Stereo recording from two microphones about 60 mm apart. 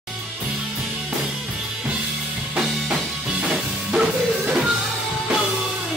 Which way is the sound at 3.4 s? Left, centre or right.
Centre.